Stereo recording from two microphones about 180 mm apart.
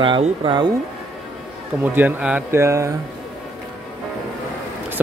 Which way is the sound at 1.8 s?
10° right (ahead or behind).